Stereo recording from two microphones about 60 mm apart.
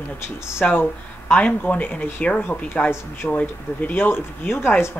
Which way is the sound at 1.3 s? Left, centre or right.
Left.